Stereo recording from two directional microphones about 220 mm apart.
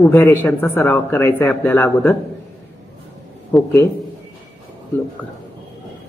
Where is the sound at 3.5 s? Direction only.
Centre (ahead or behind).